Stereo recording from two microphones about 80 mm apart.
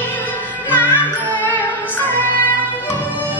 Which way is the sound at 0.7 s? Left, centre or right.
Left.